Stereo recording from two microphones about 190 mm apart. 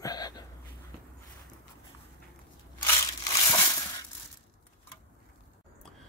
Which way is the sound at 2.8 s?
15° left (ahead or behind).